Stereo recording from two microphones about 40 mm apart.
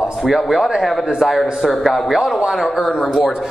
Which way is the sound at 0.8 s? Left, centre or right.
Centre.